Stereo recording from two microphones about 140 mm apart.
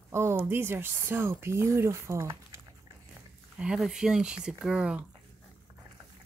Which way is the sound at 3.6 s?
5° right (ahead or behind).